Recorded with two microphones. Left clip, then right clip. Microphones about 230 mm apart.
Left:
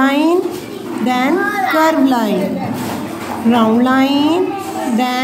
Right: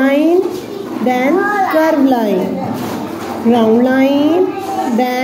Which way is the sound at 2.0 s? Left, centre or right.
Left.